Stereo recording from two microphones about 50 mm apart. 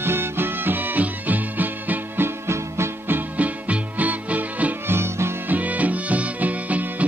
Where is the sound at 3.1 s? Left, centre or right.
Right.